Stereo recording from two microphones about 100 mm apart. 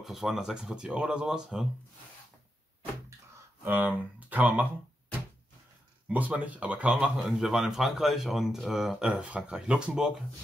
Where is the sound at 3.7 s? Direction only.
15° right (ahead or behind).